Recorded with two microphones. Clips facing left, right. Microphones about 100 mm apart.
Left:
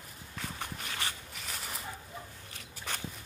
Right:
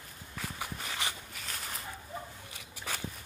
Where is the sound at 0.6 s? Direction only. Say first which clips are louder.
Right 2 dB; 15° right (ahead or behind).